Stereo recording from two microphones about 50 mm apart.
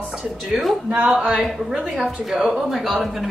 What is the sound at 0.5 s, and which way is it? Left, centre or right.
Speech, centre.